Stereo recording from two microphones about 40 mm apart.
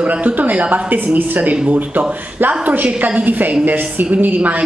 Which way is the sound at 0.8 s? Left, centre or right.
Right.